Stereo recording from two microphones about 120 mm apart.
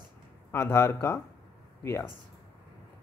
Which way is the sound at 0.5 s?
20° left (ahead or behind).